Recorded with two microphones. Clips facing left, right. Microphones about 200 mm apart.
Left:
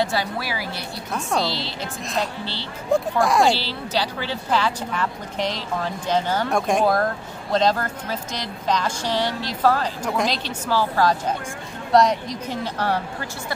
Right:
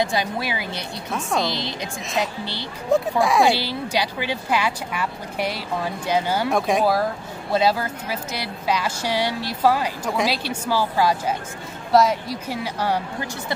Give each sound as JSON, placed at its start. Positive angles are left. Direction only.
{"t": 0.0, "sound": "a woman's voice", "side_deg": -15}
{"t": 2.9, "sound": "speech", "side_deg": 0}
{"t": 3.4, "sound": "speech", "side_deg": -15}